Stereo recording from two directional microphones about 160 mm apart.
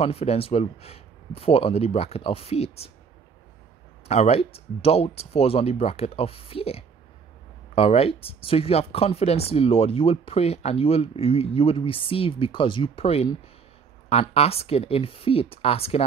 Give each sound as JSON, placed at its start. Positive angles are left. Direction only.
{"t": 0.0, "sound": "speech", "side_deg": 40}
{"t": 4.1, "sound": "speech", "side_deg": 40}